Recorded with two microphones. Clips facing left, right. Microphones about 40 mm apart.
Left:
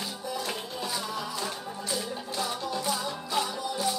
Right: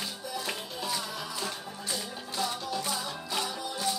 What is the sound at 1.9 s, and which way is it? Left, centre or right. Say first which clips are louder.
Music: left 3 dB; centre.